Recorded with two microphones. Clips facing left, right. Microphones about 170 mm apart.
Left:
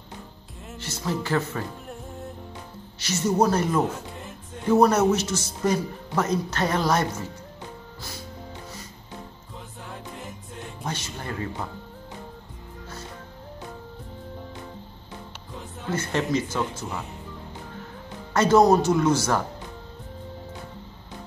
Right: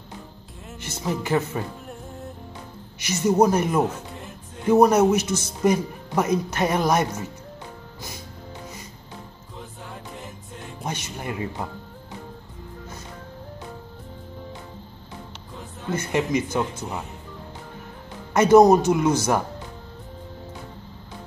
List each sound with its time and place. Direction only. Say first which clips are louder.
0.7 s speech: right 1 dB; 15° right (ahead or behind)
1.9 s music: even; centre (ahead or behind)
3.0 s speech: right 3 dB; 15° right (ahead or behind)
10.8 s speech: right 2 dB; 15° right (ahead or behind)
15.9 s speech: right 2 dB; 15° right (ahead or behind)
18.3 s speech: right 4 dB; 15° right (ahead or behind)